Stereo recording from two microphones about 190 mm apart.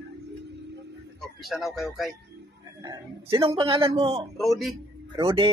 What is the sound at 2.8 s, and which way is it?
A man's voice, 20° right (ahead or behind).